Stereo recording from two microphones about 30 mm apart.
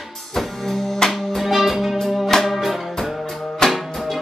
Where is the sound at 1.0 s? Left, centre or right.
Centre.